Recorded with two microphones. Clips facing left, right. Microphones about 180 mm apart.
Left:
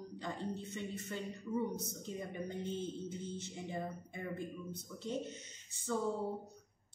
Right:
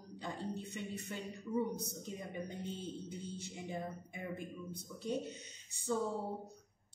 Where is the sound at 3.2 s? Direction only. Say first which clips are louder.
Left 1 dB; 15° right (ahead or behind).